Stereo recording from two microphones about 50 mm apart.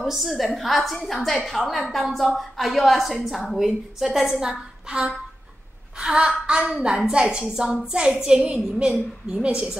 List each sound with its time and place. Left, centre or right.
0.0 s a woman's voice: centre
8.4 s a woman's voice: right